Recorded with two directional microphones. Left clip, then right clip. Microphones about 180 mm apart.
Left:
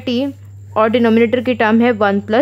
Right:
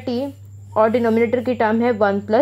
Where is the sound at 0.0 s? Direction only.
15° left (ahead or behind).